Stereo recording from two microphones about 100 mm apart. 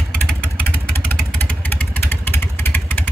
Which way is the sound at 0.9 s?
20° left (ahead or behind).